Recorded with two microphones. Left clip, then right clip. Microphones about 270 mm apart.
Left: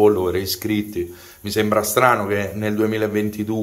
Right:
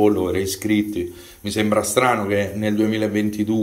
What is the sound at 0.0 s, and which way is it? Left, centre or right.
Speech, centre.